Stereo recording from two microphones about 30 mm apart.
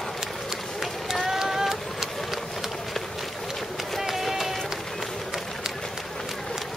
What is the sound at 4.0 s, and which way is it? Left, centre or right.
Run, centre.